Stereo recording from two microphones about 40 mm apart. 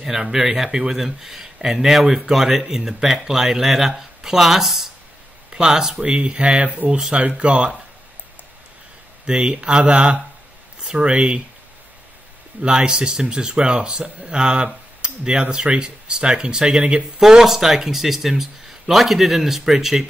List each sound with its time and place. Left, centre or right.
0.0 s speech: centre
6.0 s speech: right
9.2 s speech: right
12.6 s speech: right